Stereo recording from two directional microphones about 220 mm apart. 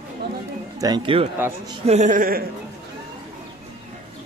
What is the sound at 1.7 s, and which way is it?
Speech, 30° right (ahead or behind).